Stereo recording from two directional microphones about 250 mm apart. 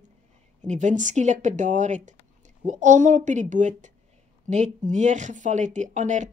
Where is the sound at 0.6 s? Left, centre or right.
Right.